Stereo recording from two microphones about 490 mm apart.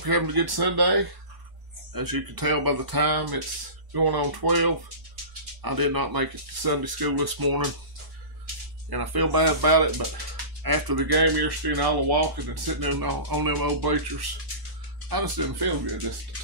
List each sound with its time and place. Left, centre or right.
0.0 s speech: right
8.9 s speech: right